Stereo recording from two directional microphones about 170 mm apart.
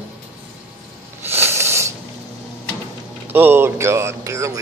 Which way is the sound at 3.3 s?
10° right (ahead or behind).